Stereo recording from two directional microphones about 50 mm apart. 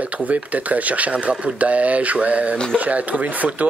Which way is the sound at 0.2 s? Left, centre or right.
Right.